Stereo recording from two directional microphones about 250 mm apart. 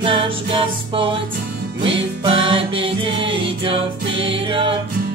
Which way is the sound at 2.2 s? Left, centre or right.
Right.